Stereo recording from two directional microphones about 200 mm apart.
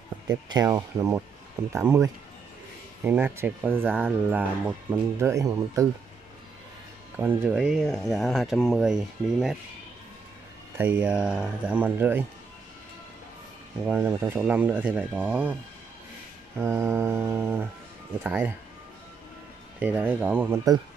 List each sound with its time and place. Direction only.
0.5 s speech: 20° right (ahead or behind)
7.2 s speech: 5° right (ahead or behind)
10.8 s speech: 10° right (ahead or behind)
13.8 s speech: 10° right (ahead or behind)
16.5 s speech: 10° right (ahead or behind)
19.8 s speech: 10° right (ahead or behind)